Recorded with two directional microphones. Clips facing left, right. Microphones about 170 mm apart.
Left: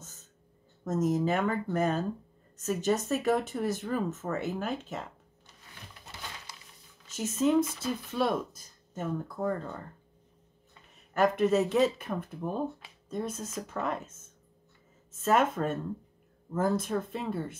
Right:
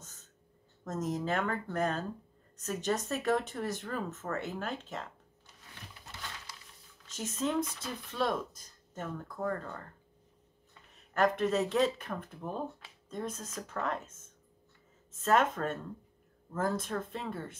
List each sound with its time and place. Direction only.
0.8 s speech: 5° left (ahead or behind)
7.1 s speech: 5° left (ahead or behind)
11.1 s speech: 5° left (ahead or behind)
15.2 s speech: 5° left (ahead or behind)